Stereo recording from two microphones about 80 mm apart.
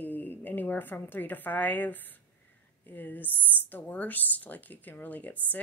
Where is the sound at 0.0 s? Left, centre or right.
Left.